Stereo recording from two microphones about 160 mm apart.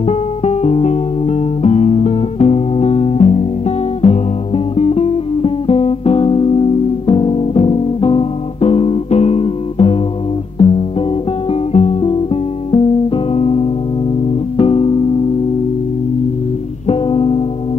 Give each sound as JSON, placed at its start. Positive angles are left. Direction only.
{"t": 0.0, "sound": "music", "side_deg": 40}
{"t": 16.8, "sound": "music", "side_deg": 35}